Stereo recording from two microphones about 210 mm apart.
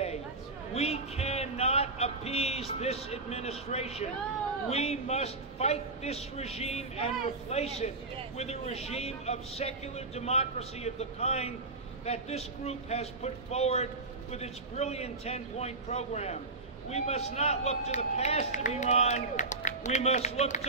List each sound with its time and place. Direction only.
0.7 s music: 30° left (ahead or behind)
4.6 s a man's voice: 30° left (ahead or behind)